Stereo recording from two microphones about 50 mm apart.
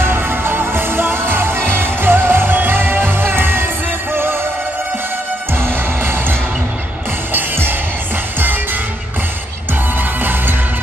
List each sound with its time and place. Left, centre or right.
0.0 s music: right
5.5 s music: right
7.3 s music: right